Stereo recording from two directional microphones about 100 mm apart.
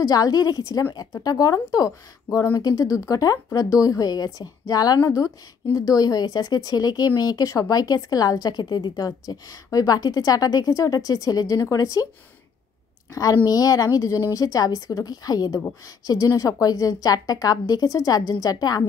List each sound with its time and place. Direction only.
0.0 s speech: 40° left (ahead or behind)
13.1 s a woman's voice: 35° left (ahead or behind)